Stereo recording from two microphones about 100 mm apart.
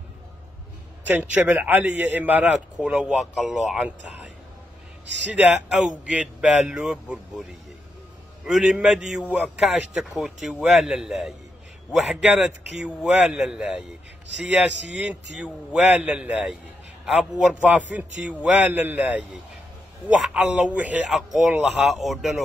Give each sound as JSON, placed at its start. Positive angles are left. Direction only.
{"t": 1.0, "sound": "a man's voice", "side_deg": -15}
{"t": 5.3, "sound": "a man's voice", "side_deg": -10}
{"t": 8.5, "sound": "a man's voice", "side_deg": -5}
{"t": 15.2, "sound": "a man's voice", "side_deg": -5}
{"t": 21.1, "sound": "a man's voice", "side_deg": -5}